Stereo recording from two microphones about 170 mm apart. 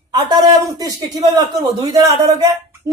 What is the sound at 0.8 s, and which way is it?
Speech, 20° right (ahead or behind).